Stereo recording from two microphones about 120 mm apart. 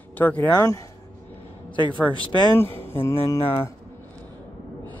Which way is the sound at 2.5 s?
20° left (ahead or behind).